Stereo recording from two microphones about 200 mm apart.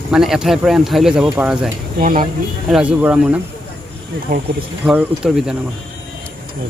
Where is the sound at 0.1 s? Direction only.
5° right (ahead or behind).